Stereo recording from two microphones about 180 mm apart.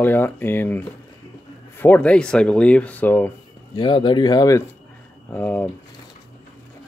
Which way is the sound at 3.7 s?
25° left (ahead or behind).